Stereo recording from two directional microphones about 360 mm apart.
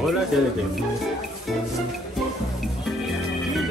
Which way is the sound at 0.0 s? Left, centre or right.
Centre.